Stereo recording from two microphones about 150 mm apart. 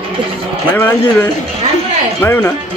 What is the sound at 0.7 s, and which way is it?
A man's voice, 15° left (ahead or behind).